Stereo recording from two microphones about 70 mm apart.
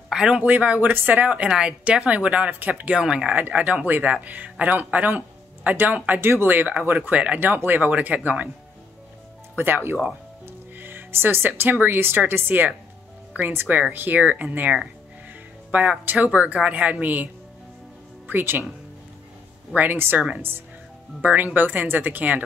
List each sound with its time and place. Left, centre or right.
0.1 s a sound: centre
0.4 s speech: right
3.3 s speech: right
7.3 s speech: right
9.6 s speech: right
19.7 s speech: right